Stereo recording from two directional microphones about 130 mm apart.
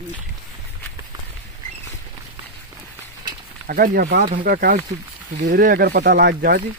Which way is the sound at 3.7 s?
90° right.